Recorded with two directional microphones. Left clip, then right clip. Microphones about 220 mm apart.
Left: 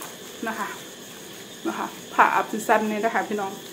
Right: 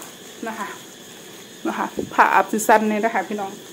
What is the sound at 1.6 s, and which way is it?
Speech, 30° right (ahead or behind).